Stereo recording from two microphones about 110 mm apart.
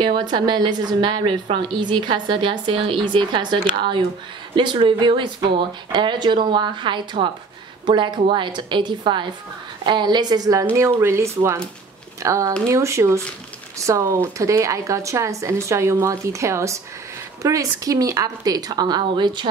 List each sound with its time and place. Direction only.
0.0 s a woman's voice: 45° right (ahead or behind)
10.8 s speech: 25° right (ahead or behind); by 19.5 s 45° right (ahead or behind)